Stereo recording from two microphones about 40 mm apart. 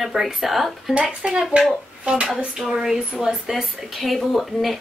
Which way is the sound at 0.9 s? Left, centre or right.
Centre.